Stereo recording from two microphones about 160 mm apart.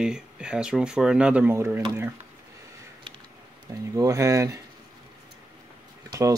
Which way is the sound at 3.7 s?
20° right (ahead or behind).